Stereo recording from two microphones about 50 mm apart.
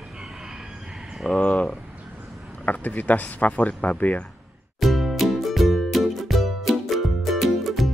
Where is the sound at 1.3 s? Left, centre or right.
Left.